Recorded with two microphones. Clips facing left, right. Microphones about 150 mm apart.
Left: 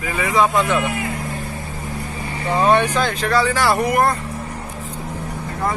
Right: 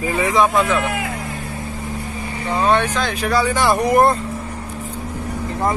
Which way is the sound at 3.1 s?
10° right (ahead or behind).